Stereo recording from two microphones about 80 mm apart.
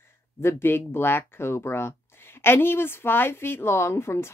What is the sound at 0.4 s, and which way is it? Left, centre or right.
Speech, left.